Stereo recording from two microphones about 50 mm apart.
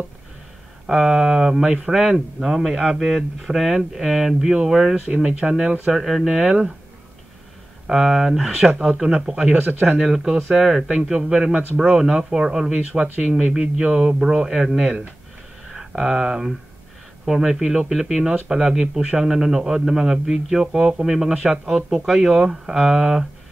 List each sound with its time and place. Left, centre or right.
0.8 s speech: centre
5.4 s a man's voice: right
5.9 s speech: centre
7.8 s speech: centre
9.0 s a man's voice: right
9.6 s speech: right
9.8 s a man's voice: centre